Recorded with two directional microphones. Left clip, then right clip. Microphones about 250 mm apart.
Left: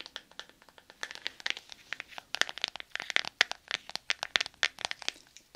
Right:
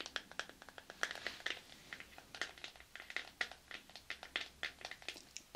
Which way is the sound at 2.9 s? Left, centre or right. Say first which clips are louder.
Left 14 dB; left.